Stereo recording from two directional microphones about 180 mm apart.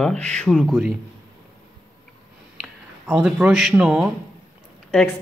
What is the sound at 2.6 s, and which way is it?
A woman's voice, 5° right (ahead or behind).